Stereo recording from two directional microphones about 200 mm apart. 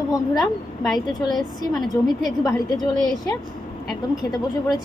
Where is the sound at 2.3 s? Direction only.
15° left (ahead or behind).